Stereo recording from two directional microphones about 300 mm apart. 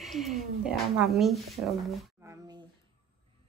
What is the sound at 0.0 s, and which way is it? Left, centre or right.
Speech, centre.